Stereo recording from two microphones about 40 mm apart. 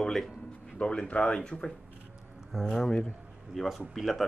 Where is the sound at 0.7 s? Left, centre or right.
Left.